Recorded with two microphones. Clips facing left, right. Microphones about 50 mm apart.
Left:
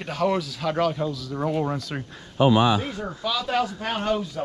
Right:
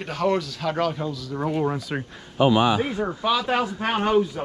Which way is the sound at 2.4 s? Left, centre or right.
Right.